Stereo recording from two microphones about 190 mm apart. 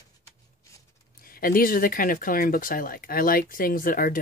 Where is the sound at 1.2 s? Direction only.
50° left (ahead or behind).